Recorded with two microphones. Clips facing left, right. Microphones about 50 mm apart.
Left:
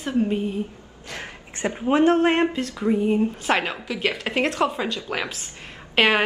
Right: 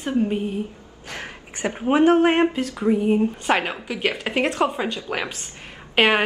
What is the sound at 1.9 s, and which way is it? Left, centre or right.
A woman's voice, right.